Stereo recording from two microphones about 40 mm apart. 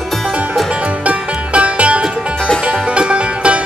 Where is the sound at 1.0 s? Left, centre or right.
Right.